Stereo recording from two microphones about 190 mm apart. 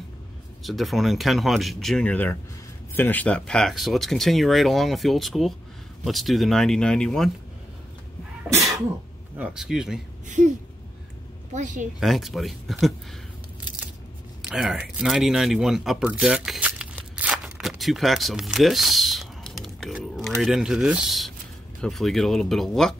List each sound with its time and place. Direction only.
0.7 s speech: centre (ahead or behind)
9.4 s speech: 5° right (ahead or behind)
10.2 s a woman's voice: 40° right (ahead or behind)
11.5 s a woman's voice: 40° right (ahead or behind)
12.0 s speech: centre (ahead or behind)
14.5 s a sound: centre (ahead or behind)
20.2 s speech: centre (ahead or behind)